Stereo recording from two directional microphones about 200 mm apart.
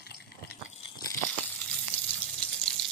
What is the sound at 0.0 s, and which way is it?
Water, 55° left (ahead or behind).